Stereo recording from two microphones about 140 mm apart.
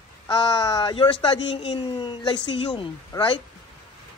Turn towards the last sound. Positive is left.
turn(degrees=25)  # may be behind; listen again after turning